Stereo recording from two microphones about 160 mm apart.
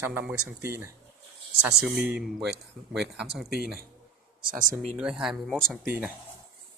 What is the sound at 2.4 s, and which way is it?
Speech, 90° right.